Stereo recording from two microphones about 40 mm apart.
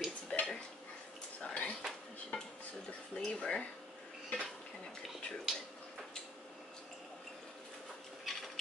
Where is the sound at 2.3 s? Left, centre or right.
Left.